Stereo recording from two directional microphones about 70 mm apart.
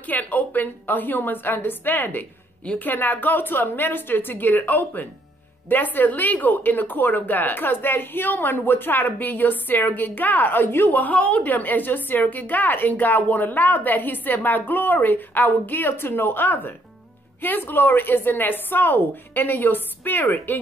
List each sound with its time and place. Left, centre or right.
0.0 s a woman's voice: left